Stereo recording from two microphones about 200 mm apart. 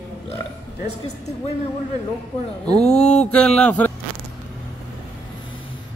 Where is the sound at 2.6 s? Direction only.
30° left (ahead or behind).